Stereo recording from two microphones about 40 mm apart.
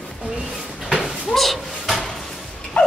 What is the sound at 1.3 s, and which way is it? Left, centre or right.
Slam, centre.